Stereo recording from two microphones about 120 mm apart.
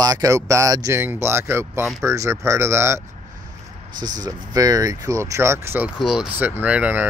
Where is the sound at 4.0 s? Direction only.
30° right (ahead or behind).